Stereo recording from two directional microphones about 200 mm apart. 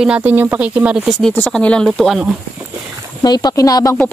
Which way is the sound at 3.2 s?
20° left (ahead or behind).